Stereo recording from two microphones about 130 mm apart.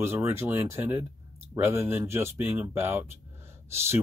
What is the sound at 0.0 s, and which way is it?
Speech, 20° right (ahead or behind).